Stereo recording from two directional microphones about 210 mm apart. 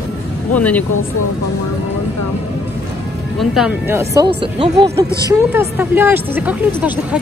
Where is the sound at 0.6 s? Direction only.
5° left (ahead or behind).